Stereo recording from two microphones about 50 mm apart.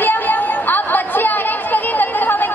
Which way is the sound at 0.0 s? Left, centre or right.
Left.